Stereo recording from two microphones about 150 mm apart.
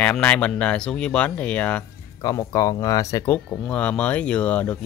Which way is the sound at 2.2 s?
20° left (ahead or behind).